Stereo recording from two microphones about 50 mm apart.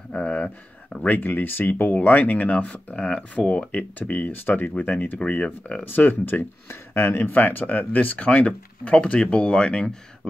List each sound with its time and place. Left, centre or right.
0.1 s a sound: left
1.0 s speech: left
5.2 s speech: left
5.9 s speech: left
6.7 s speech: left
7.1 s speech: left
8.3 s speech: left